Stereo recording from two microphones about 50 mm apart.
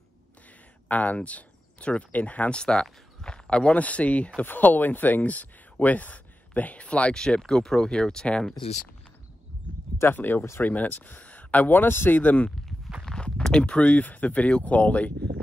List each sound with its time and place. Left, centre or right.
0.8 s speech: left
2.5 s speech: centre
10.1 s speech: left
12.2 s speech: left
13.0 s speech: centre; by 15.1 s left